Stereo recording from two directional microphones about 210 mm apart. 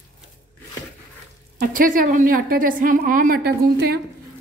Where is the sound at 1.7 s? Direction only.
40° right (ahead or behind).